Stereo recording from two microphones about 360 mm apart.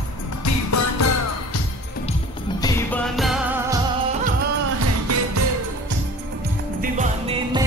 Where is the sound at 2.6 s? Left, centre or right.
Centre.